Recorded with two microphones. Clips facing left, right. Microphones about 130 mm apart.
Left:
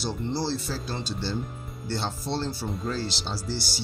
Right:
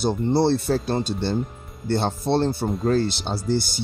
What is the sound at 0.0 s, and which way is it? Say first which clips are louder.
Speech: right 9 dB; 55° right (ahead or behind).